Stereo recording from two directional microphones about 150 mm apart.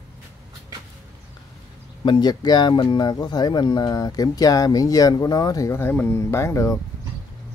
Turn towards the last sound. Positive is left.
turn(degrees=20)  # may be behind; listen again after turning